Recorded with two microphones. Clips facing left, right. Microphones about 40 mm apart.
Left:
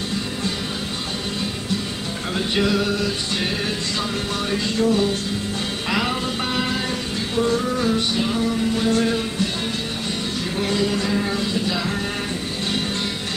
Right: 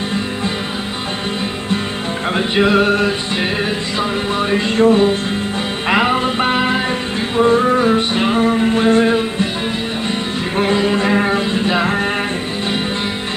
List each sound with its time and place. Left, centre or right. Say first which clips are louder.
2.3 s music: right 7 dB; right
10.6 s music: right 7 dB; right